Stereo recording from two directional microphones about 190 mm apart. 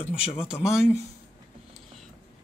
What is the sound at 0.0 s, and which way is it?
Speech, 30° left (ahead or behind).